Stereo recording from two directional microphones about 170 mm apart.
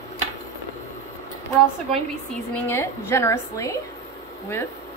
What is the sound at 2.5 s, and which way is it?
A woman's voice, 15° left (ahead or behind).